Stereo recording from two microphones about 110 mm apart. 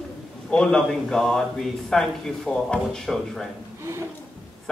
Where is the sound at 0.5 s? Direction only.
5° left (ahead or behind).